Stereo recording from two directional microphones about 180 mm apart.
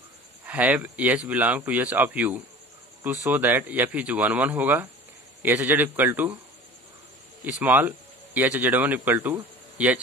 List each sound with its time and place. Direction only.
0.5 s speech: 10° right (ahead or behind)
7.5 s speech: 10° right (ahead or behind)